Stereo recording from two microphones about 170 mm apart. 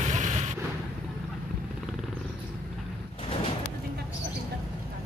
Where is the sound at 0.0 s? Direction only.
45° right (ahead or behind).